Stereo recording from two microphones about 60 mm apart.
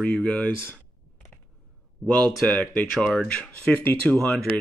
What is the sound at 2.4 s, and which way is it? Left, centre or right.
Speech, left.